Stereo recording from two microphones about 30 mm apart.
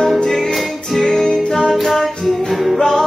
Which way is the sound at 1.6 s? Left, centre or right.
Centre.